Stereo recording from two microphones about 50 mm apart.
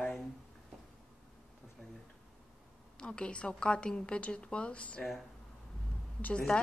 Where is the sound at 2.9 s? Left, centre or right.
Centre.